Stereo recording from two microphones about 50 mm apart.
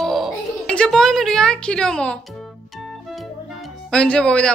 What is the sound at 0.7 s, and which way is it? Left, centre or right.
Speech, centre.